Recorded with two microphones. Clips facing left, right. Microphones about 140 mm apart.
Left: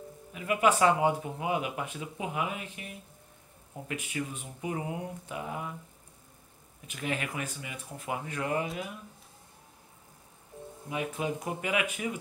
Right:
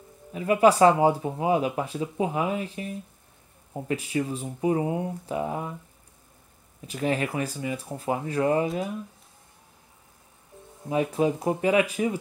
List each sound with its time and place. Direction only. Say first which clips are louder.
0.3 s speech: right 7 dB; 35° right (ahead or behind)
6.9 s speech: right 8 dB; 35° right (ahead or behind)
10.9 s speech: right 9 dB; 35° right (ahead or behind)